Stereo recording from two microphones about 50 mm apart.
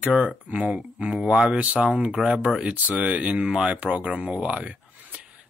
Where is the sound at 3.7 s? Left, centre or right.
Right.